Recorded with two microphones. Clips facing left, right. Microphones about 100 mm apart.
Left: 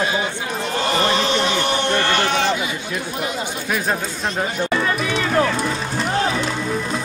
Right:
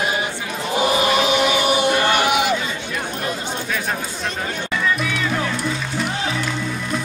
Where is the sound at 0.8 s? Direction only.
10° right (ahead or behind).